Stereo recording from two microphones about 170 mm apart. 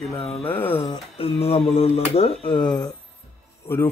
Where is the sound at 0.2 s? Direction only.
35° left (ahead or behind).